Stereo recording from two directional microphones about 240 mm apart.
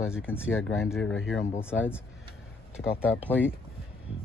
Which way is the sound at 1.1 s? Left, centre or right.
Left.